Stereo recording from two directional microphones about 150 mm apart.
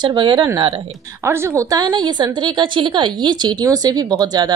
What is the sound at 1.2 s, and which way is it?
A woman's voice, 15° right (ahead or behind).